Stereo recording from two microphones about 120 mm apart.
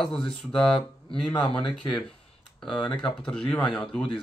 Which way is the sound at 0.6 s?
45° left (ahead or behind).